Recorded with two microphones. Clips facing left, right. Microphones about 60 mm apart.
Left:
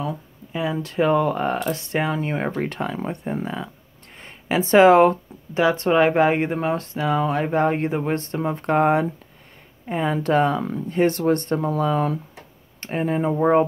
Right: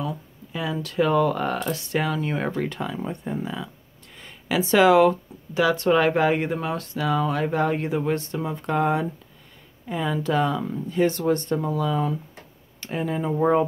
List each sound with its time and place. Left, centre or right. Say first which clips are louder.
0.5 s speech: left 3 dB; left
2.6 s speech: left 2 dB; left